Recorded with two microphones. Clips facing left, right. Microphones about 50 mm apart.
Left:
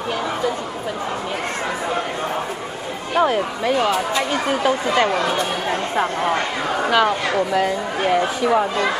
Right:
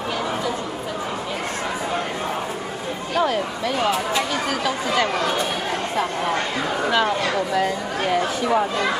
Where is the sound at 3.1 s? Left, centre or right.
Left.